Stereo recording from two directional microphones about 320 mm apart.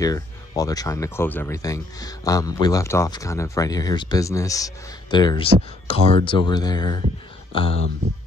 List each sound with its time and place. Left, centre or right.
0.0 s speech: centre